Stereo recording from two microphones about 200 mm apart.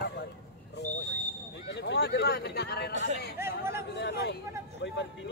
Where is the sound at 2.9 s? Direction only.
35° right (ahead or behind).